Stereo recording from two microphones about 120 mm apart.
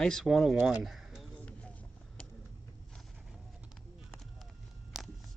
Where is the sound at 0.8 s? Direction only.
Centre (ahead or behind).